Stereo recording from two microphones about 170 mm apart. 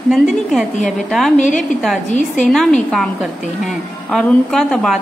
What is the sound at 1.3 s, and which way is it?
Speech, 45° left (ahead or behind).